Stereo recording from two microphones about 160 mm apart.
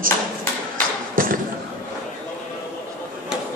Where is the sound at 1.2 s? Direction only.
60° right (ahead or behind).